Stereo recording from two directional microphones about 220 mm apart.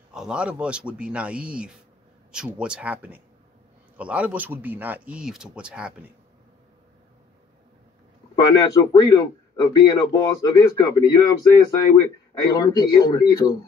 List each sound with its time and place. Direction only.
0.1 s speech: 5° right (ahead or behind)
8.5 s a man's voice: 15° left (ahead or behind)